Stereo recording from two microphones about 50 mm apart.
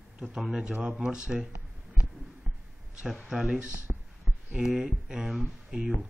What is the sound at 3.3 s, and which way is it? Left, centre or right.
Speech, centre.